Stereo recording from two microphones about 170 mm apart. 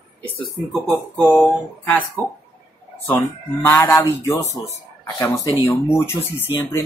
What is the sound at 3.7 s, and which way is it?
Speech, 10° left (ahead or behind).